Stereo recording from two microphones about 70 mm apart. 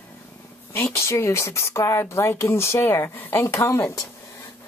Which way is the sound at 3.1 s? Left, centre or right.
Left.